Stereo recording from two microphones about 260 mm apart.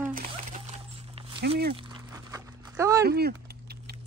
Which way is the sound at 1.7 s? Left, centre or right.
Centre.